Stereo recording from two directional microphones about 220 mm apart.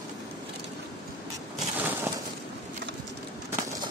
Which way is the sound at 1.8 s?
10° right (ahead or behind).